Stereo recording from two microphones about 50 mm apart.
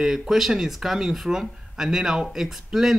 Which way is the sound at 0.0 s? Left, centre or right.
Centre.